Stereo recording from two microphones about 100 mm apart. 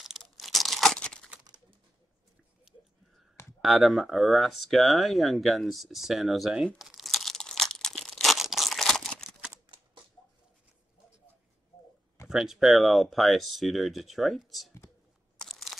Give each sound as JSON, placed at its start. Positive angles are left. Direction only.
{"t": 0.0, "sound": "tearing", "side_deg": 0}
{"t": 1.4, "sound": "typing", "side_deg": -50}
{"t": 3.6, "sound": "a sound", "side_deg": 0}
{"t": 12.3, "sound": "speech", "side_deg": -5}
{"t": 15.4, "sound": "crunch", "side_deg": 0}